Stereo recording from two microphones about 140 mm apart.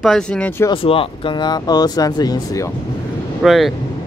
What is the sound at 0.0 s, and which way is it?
Speech, 5° left (ahead or behind).